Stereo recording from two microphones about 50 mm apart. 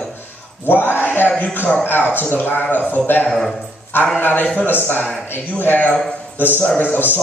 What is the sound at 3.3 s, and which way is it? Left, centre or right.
Speech, centre.